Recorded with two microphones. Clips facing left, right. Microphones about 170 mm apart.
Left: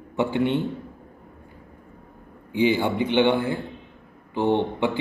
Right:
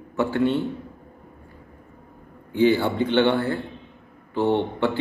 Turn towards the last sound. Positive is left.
turn(degrees=15)  # may be behind; listen again after turning